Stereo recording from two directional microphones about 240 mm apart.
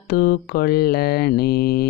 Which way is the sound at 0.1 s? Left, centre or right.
Left.